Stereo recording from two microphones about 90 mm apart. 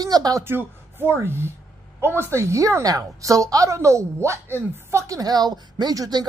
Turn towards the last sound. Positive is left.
turn(degrees=-45)  # may be behind; listen again after turning